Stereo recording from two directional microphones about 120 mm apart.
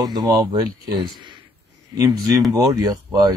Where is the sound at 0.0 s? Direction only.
35° right (ahead or behind).